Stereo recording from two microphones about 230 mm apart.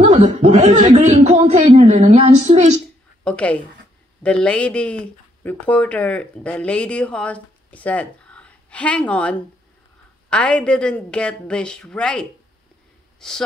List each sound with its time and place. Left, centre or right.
0.0 s speech: right
3.3 s speech: centre